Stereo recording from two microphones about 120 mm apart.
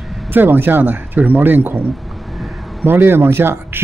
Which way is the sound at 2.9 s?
20° right (ahead or behind).